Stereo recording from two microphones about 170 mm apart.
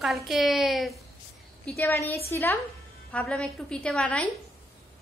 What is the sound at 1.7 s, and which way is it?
A woman's voice, 10° left (ahead or behind).